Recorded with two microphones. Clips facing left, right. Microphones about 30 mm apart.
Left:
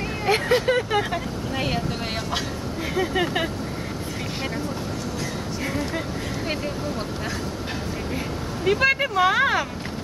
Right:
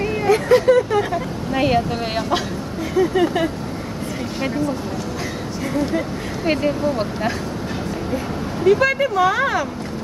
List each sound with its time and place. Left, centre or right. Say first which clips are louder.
0.3 s vehicle: right 6 dB; left
1.5 s a woman's voice: right 9 dB; centre
2.9 s speech: right 6 dB; left
5.6 s speech: right 7 dB; centre
6.4 s speech: right 12 dB; right
8.6 s speech: right 4 dB; centre